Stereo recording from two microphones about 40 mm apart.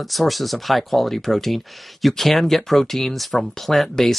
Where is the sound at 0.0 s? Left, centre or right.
Centre.